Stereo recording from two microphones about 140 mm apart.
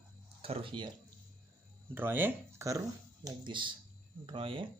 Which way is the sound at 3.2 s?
35° right (ahead or behind).